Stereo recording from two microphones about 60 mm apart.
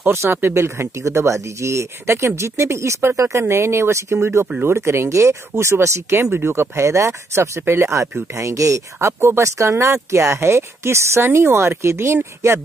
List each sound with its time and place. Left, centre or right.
0.1 s speech: right
1.0 s speech: right
6.3 s speech: right
8.4 s speech: right
9.2 s speech: right